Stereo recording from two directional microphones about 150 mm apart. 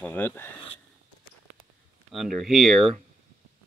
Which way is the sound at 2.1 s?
Centre (ahead or behind).